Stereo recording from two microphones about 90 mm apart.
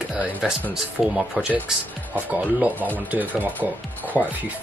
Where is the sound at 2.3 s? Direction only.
15° right (ahead or behind).